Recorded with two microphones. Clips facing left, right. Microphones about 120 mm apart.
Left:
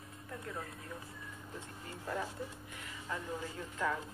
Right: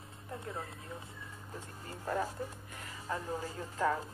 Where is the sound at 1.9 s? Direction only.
45° right (ahead or behind).